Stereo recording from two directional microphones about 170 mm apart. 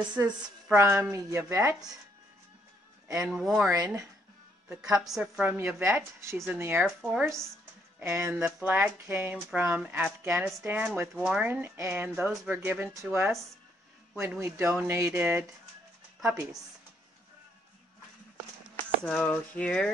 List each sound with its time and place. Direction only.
0.1 s speech: 10° right (ahead or behind)
3.2 s speech: 5° right (ahead or behind)
3.6 s speech: 20° right (ahead or behind)
4.9 s speech: centre (ahead or behind)
14.3 s speech: 15° right (ahead or behind)
19.0 s a sound: 5° left (ahead or behind)